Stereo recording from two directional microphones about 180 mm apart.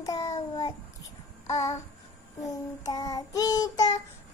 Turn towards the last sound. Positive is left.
turn(degrees=20)  # may be behind; listen again after turning